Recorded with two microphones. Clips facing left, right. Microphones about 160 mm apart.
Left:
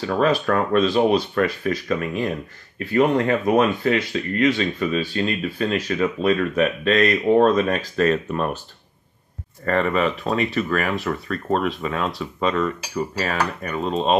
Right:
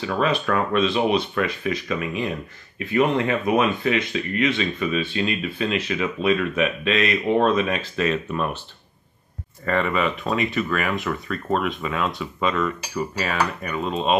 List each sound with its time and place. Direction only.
0.0 s speech: 45° left (ahead or behind)
9.7 s speech: 40° left (ahead or behind)